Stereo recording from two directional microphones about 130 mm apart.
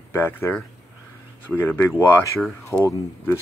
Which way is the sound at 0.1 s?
15° left (ahead or behind).